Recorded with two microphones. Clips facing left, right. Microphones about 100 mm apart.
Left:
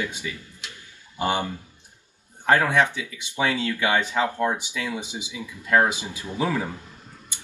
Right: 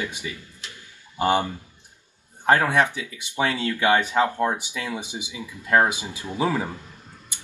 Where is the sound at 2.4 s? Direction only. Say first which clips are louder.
Right 1 dB; 15° right (ahead or behind).